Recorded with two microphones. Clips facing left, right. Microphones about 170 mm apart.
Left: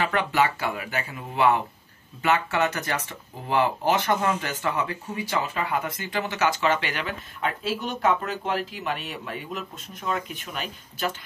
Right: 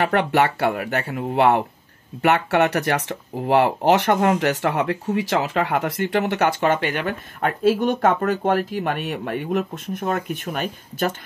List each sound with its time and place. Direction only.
0.0 s speech: 60° right (ahead or behind)
5.1 s speech: 80° right; by 11.1 s 50° right (ahead or behind)